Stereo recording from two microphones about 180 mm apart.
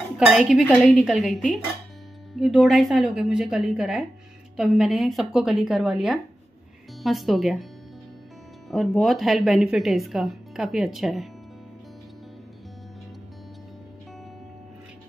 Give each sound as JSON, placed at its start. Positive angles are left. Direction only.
{"t": 0.2, "sound": "speech", "side_deg": -5}
{"t": 8.6, "sound": "speech", "side_deg": 0}